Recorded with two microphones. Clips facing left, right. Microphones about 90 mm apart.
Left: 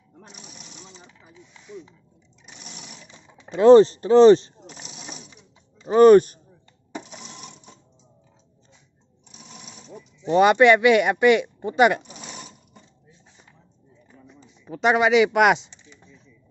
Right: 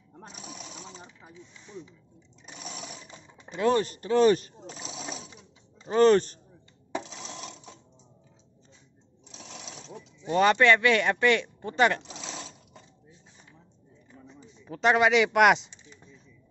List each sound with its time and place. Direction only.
3.5 s speech: 30° left (ahead or behind)
5.9 s speech: 15° left (ahead or behind)
9.3 s sewing machine: 90° right
10.2 s speech: 20° left (ahead or behind)
12.0 s zipper: 90° right
14.6 s speech: 5° left (ahead or behind)